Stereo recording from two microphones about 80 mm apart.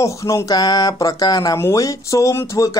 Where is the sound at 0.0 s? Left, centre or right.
Left.